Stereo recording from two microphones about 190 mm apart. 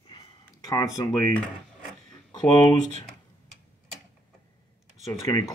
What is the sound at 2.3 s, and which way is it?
Speech, 20° left (ahead or behind).